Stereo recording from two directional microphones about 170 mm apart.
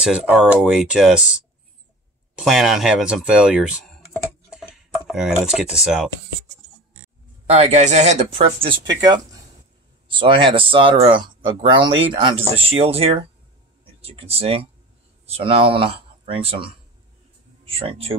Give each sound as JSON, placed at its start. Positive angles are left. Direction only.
{"t": 0.0, "sound": "speech", "side_deg": -5}
{"t": 4.9, "sound": "speech", "side_deg": 0}
{"t": 7.4, "sound": "speech", "side_deg": -40}
{"t": 9.0, "sound": "speech", "side_deg": -20}